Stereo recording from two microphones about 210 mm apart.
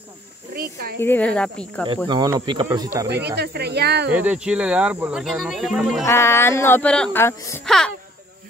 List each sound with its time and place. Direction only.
0.6 s speech: 45° right (ahead or behind)
1.0 s speech: 5° left (ahead or behind)
2.0 s speech: 20° right (ahead or behind)
3.1 s speech: 50° right (ahead or behind)
4.1 s speech: 5° right (ahead or behind)
6.0 s speech: 10° left (ahead or behind)
7.6 s speech: centre (ahead or behind)